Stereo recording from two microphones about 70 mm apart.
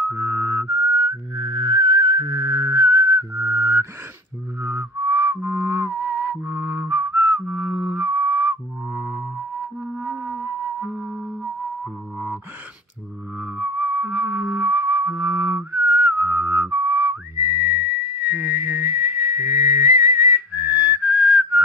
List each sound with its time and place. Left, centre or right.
0.1 s whistling: right
1.3 s whistling: right
2.1 s whistling: right
4.6 s music: right
10.9 s music: centre
13.4 s music: right